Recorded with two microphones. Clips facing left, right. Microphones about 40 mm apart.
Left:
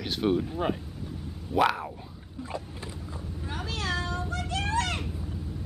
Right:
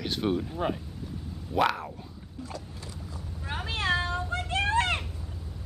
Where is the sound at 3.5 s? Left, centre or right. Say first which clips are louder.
Right 4 dB; right.